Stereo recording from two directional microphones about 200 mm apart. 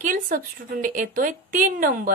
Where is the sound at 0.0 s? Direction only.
40° right (ahead or behind).